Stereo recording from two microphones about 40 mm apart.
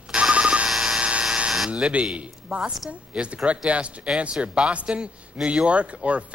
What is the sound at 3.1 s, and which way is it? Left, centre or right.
Speech, right.